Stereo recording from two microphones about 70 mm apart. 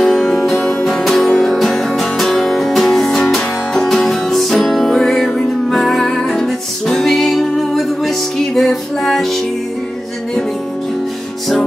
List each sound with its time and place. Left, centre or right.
0.0 s music: centre
0.7 s music: centre
0.9 s music: centre